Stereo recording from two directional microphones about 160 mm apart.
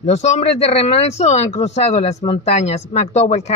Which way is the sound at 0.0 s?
45° left (ahead or behind).